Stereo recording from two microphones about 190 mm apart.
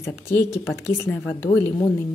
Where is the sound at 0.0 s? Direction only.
15° left (ahead or behind).